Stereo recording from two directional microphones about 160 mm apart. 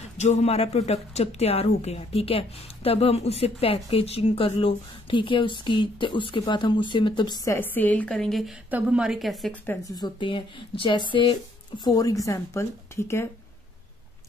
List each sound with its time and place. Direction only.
0.2 s a woman's voice: 45° left (ahead or behind); by 7.5 s 25° left (ahead or behind)
7.5 s a woman's voice: 10° left (ahead or behind)
9.7 s a woman's voice: 25° left (ahead or behind)